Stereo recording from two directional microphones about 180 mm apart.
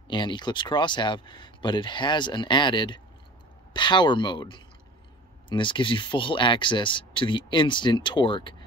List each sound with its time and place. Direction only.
0.1 s speech: 25° left (ahead or behind)